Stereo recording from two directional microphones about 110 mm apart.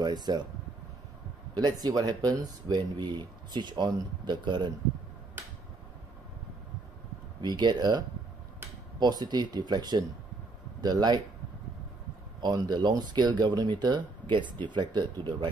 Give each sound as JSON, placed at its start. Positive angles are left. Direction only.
{"t": 0.0, "sound": "speech", "side_deg": -40}
{"t": 1.5, "sound": "speech", "side_deg": -35}
{"t": 7.4, "sound": "speech", "side_deg": -40}
{"t": 9.0, "sound": "speech", "side_deg": -40}
{"t": 12.4, "sound": "speech", "side_deg": -40}